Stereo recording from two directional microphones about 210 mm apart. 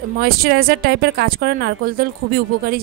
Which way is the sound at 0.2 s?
45° right (ahead or behind).